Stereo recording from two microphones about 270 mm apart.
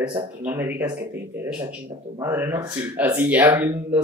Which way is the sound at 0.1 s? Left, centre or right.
Right.